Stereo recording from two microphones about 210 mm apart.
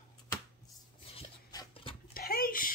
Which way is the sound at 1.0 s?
25° left (ahead or behind).